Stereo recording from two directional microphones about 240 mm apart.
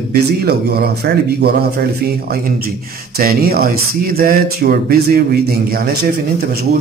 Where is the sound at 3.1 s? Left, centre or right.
Right.